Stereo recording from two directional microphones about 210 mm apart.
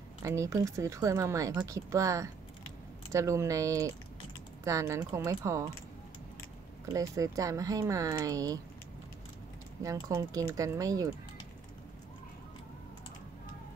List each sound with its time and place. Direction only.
0.2 s speech: 15° right (ahead or behind)
6.9 s speech: 15° right (ahead or behind)
9.8 s speech: 15° right (ahead or behind)